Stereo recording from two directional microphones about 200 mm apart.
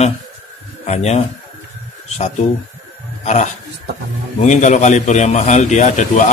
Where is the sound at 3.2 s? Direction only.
35° left (ahead or behind).